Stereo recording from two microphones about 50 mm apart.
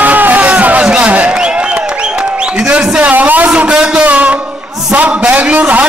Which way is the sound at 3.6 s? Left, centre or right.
Centre.